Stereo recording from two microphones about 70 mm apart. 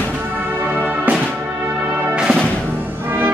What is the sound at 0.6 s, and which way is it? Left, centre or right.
Music, right.